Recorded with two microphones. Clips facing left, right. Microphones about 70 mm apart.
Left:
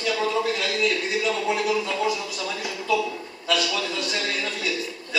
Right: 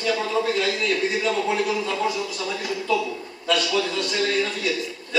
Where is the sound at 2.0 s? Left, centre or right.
Centre.